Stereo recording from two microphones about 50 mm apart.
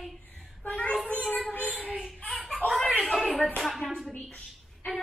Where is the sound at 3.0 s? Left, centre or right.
Centre.